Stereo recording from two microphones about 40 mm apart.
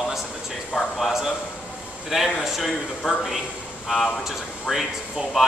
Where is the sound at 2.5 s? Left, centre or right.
Centre.